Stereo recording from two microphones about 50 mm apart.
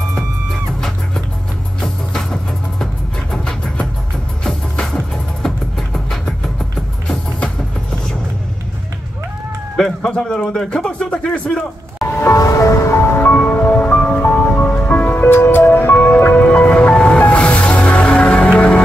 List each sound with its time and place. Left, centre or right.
0.1 s music: centre
2.8 s music: centre
7.1 s vehicle: centre
9.8 s a man's voice: centre
12.1 s music: left
12.9 s music: left
13.3 s music: left
13.6 s music: left
13.9 s music: left
15.9 s music: left